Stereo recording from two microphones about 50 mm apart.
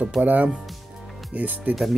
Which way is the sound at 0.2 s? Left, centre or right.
Right.